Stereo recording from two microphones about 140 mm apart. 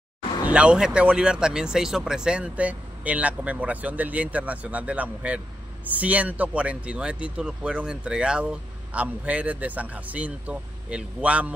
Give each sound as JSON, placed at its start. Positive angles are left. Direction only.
{"t": 0.5, "sound": "speech", "side_deg": -5}